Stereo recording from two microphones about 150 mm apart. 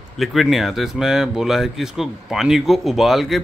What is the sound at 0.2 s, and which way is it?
Speech, centre (ahead or behind).